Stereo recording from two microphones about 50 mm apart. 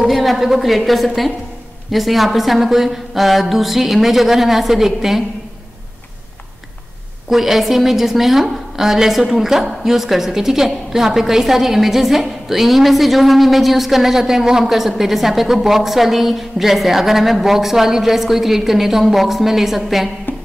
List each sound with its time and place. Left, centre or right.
0.0 s a woman's voice: centre
7.2 s a woman's voice: centre
20.3 s music: left